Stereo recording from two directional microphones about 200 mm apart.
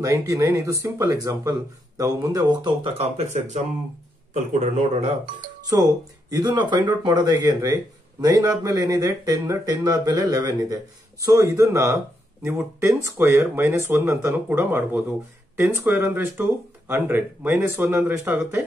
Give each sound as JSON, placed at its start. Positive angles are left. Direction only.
{"t": 0.0, "sound": "speech", "side_deg": -15}
{"t": 5.7, "sound": "speech", "side_deg": -20}